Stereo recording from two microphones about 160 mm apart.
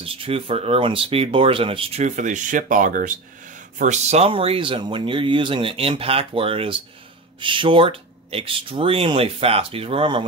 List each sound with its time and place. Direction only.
0.0 s speech: 35° right (ahead or behind)